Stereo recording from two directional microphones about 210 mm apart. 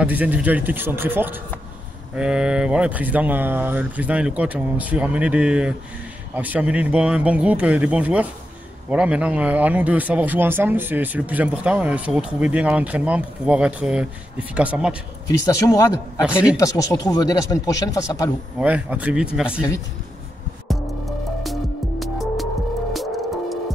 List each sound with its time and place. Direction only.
0.0 s speech: 10° right (ahead or behind)
15.4 s speech: 15° left (ahead or behind)
16.2 s speech: 5° right (ahead or behind)
16.5 s speech: 15° left (ahead or behind)
18.6 s speech: 5° right (ahead or behind)
20.6 s music: centre (ahead or behind)